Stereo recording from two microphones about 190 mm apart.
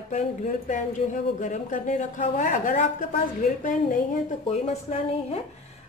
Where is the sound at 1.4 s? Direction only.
40° left (ahead or behind).